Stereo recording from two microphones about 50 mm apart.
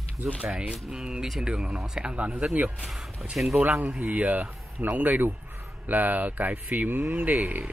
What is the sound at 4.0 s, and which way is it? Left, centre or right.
Speech, right.